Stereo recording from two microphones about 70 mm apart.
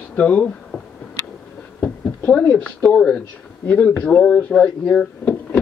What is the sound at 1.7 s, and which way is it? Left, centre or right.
Speech, centre.